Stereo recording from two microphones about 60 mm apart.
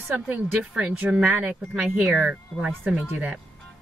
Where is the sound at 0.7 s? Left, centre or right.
Right.